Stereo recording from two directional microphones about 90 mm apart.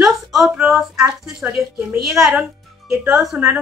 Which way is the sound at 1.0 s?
20° right (ahead or behind).